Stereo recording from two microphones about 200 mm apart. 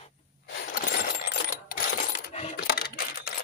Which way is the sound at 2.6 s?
50° left (ahead or behind).